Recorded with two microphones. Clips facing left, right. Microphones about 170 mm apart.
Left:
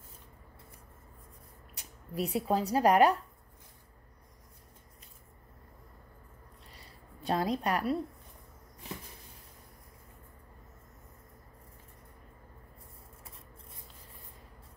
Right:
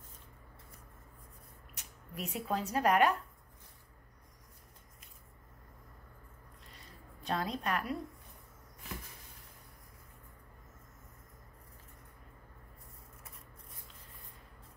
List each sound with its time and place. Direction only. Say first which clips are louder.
1.8 s speech: left 8 dB; 35° left (ahead or behind)
7.2 s a woman's voice: left 5 dB; 35° left (ahead or behind)